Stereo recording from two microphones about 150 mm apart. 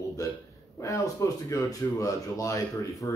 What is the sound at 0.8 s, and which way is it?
Speech, 20° left (ahead or behind).